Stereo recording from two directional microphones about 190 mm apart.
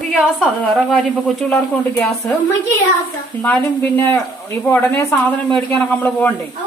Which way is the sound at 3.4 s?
10° left (ahead or behind).